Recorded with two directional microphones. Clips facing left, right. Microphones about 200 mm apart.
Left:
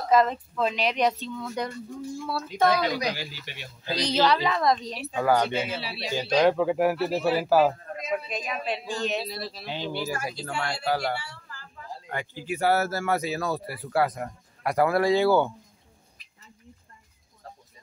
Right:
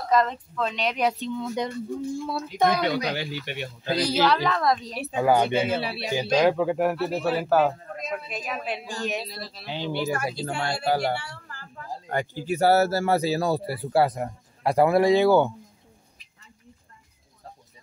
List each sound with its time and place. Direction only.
0.1 s speech: 5° left (ahead or behind)
1.2 s speech: 20° right (ahead or behind)
3.1 s speech: 60° right (ahead or behind)
3.9 s speech: 5° right (ahead or behind)
5.1 s speech: 20° right (ahead or behind)
5.5 s speech: 55° right (ahead or behind)
6.3 s speech: centre (ahead or behind)
10.2 s speech: 30° right (ahead or behind)
12.1 s speech: 40° right (ahead or behind); by 15.5 s 20° right (ahead or behind)